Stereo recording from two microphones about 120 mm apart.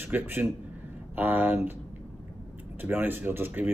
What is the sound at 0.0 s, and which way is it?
A man's voice, 15° right (ahead or behind).